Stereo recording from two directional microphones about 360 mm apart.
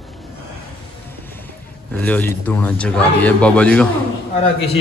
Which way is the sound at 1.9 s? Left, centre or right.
Centre.